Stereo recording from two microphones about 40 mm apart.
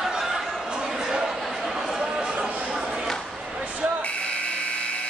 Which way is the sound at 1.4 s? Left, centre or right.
Centre.